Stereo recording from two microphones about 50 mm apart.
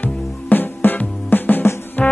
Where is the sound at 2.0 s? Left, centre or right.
Left.